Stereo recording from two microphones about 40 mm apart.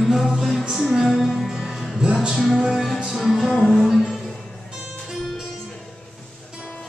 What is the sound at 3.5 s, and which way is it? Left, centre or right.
Music, centre.